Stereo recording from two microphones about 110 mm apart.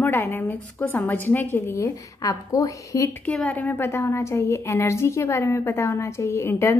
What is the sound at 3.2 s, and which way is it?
A woman's voice, 10° left (ahead or behind).